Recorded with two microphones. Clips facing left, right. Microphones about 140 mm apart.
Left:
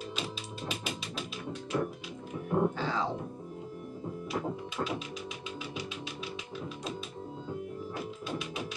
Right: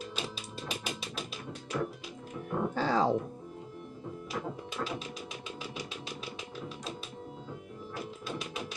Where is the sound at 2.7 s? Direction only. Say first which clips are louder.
Right 5 dB; 40° right (ahead or behind).